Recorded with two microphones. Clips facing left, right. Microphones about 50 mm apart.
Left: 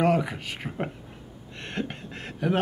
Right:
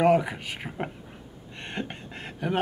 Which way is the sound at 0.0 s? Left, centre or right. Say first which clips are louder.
Right 2 dB; centre.